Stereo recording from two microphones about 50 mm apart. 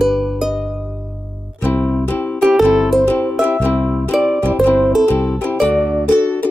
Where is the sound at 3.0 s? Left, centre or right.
Left.